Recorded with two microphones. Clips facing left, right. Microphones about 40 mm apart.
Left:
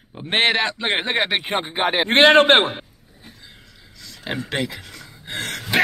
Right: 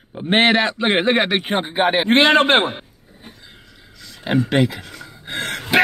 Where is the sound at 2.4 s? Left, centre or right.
Left.